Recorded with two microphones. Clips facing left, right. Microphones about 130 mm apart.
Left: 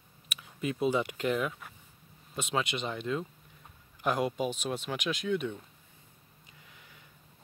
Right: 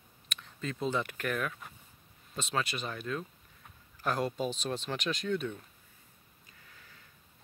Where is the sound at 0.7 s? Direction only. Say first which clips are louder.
Left 4 dB; 15° left (ahead or behind).